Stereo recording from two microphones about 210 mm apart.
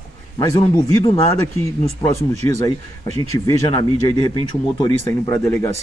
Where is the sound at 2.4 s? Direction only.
15° left (ahead or behind).